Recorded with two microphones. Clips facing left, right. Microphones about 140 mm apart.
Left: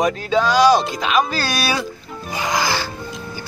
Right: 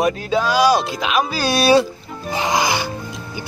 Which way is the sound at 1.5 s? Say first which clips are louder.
Right 8 dB; 30° right (ahead or behind).